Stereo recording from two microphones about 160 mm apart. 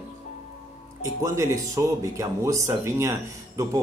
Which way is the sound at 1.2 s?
20° right (ahead or behind).